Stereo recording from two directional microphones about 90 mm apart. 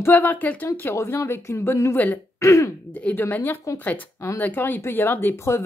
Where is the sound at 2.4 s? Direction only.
35° left (ahead or behind).